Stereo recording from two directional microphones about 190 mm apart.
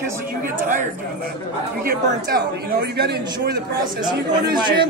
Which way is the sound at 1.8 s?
55° right (ahead or behind).